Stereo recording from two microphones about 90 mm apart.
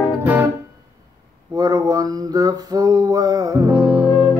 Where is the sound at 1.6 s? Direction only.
45° right (ahead or behind).